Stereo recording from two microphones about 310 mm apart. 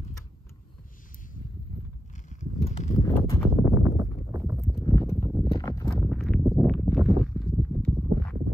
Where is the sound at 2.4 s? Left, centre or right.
Left.